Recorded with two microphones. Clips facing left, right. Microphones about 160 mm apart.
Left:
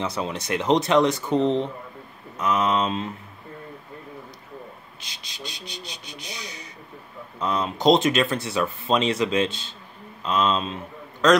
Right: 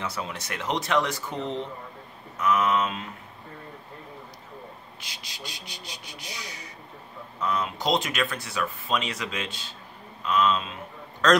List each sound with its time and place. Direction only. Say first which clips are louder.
0.0 s speech: left 5 dB; 20° left (ahead or behind)
5.1 s speech: left 3 dB; 20° left (ahead or behind)